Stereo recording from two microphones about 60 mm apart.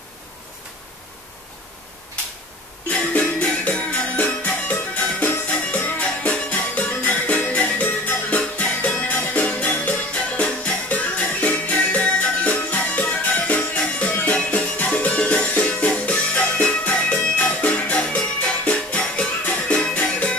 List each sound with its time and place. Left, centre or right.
2.9 s music: left